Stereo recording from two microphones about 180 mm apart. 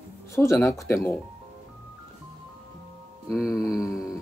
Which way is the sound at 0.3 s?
15° left (ahead or behind).